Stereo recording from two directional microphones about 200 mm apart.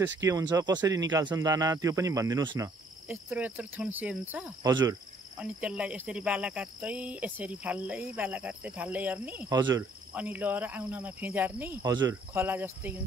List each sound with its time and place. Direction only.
0.2 s cricket: 15° right (ahead or behind)
3.1 s cricket: 10° right (ahead or behind)
4.6 s speech: 20° right (ahead or behind)
5.4 s cricket: 5° right (ahead or behind)
9.5 s speech: 20° right (ahead or behind)
10.1 s cricket: 10° right (ahead or behind)